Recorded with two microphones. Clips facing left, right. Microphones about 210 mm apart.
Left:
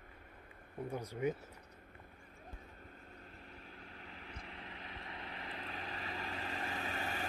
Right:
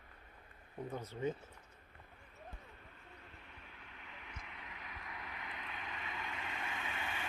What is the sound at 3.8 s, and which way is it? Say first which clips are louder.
Vehicle: left 3 dB; 35° left (ahead or behind).